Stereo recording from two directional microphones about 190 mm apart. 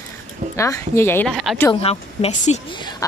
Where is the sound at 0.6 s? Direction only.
15° left (ahead or behind).